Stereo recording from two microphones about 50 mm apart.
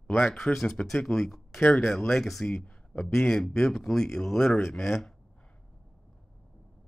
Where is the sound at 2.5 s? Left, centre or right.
Centre.